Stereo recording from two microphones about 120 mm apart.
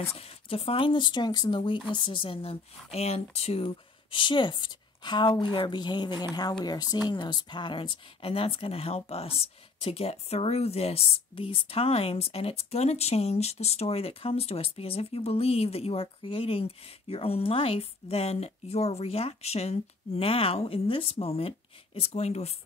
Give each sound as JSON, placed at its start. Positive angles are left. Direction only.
{"t": 0.0, "sound": "speech", "side_deg": 55}